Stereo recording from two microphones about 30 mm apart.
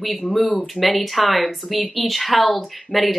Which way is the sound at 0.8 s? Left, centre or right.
Centre.